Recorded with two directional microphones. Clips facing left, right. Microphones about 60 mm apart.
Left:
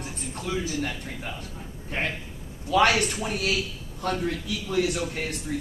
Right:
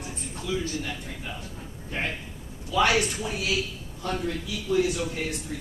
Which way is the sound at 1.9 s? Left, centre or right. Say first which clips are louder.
Left 1 dB; left.